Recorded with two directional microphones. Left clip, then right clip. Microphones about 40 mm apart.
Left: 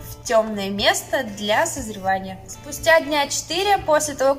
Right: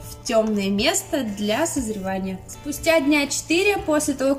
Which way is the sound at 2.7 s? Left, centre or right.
Right.